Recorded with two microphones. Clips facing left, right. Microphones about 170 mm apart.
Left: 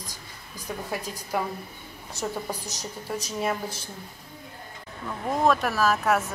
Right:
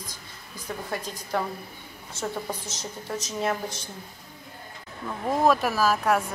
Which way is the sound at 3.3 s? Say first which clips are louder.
Right 1 dB; 5° left (ahead or behind).